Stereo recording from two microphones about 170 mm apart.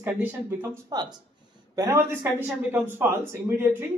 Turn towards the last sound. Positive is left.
turn(degrees=-15)  # may be behind; listen again after turning